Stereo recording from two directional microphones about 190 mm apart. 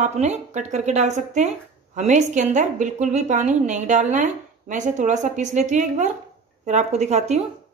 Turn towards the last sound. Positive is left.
turn(degrees=-35)  # may be behind; listen again after turning